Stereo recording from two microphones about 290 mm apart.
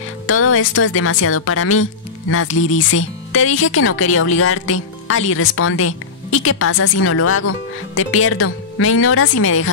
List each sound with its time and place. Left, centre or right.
0.3 s speech: left